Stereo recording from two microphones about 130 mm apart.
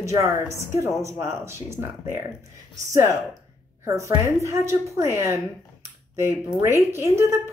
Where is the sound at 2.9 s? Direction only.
25° right (ahead or behind).